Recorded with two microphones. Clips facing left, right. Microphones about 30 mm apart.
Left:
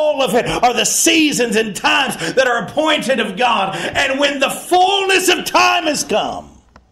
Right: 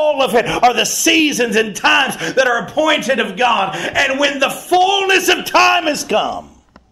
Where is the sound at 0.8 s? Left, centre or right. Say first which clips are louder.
Even; right.